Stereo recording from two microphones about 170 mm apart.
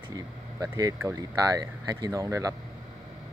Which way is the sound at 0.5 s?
20° right (ahead or behind).